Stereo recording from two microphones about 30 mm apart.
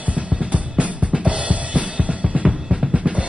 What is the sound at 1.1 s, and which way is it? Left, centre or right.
Drum kit, right.